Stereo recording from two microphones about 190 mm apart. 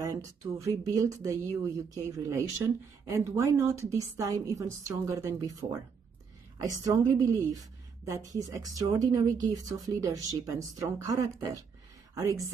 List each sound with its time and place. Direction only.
0.0 s a woman's voice: 20° right (ahead or behind)